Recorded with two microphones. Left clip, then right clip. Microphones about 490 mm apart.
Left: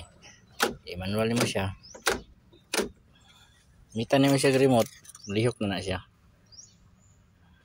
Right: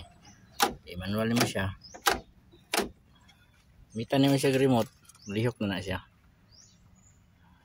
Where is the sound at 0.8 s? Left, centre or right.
Right.